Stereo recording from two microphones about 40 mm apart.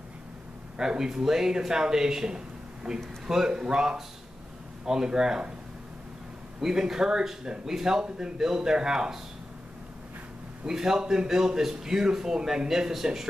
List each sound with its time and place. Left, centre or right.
0.7 s speech: centre
6.6 s speech: centre
10.6 s speech: centre